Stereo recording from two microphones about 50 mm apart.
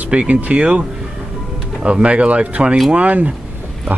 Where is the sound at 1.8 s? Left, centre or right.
Right.